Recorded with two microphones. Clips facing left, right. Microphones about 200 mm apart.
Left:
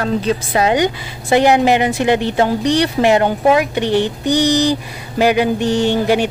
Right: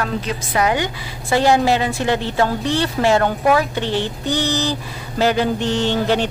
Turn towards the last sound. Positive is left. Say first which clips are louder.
# left 4 dB
turn(degrees=10)  # may be behind; listen again after turning